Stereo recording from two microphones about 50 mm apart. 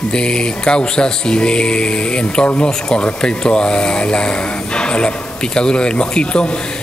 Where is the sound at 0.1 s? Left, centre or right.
Centre.